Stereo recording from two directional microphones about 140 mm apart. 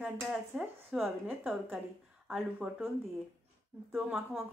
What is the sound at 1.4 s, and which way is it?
Speech, 15° right (ahead or behind).